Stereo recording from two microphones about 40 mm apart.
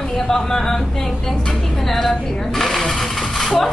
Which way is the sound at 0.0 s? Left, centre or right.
Centre.